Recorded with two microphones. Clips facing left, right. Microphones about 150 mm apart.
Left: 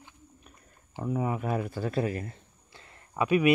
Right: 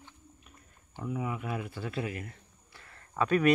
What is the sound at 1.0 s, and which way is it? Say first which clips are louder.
Speech: left 5 dB; 40° left (ahead or behind).